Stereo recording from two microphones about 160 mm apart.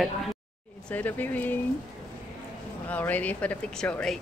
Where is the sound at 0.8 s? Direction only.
10° left (ahead or behind).